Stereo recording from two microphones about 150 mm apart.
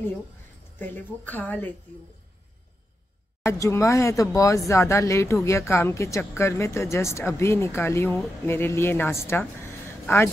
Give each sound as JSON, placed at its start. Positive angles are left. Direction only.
{"t": 0.7, "sound": "speech", "side_deg": 15}
{"t": 3.4, "sound": "a woman's voice", "side_deg": 20}